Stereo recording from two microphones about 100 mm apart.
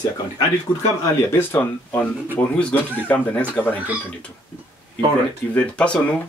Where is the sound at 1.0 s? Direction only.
20° left (ahead or behind).